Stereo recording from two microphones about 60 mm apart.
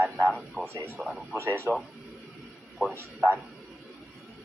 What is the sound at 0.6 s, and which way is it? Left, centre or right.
Speech, centre.